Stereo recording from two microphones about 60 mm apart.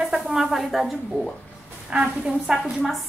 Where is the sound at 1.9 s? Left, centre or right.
Centre.